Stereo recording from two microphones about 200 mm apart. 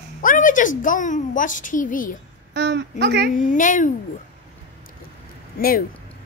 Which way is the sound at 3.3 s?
40° left (ahead or behind).